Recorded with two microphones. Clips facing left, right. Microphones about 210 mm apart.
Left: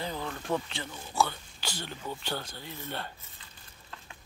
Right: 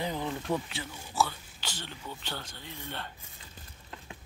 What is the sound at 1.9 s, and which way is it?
Speech, 45° left (ahead or behind).